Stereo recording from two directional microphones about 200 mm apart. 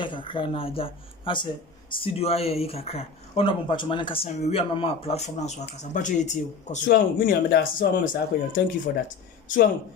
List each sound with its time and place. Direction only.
0.0 s speech: 25° left (ahead or behind); by 9.7 s 40° left (ahead or behind)